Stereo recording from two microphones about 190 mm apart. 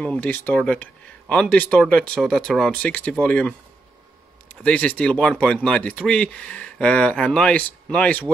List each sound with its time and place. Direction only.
0.0 s speech: 10° left (ahead or behind)
4.6 s speech: 5° left (ahead or behind)